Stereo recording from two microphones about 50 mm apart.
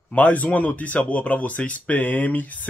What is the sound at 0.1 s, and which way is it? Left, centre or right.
Speech, left.